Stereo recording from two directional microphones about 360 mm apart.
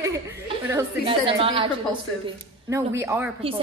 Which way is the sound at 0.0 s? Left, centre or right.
Centre.